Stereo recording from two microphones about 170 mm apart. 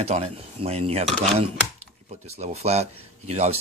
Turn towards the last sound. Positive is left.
turn(degrees=-40)  # may be behind; listen again after turning